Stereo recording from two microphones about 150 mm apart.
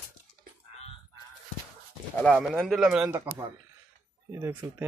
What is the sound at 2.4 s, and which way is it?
Speech, centre (ahead or behind).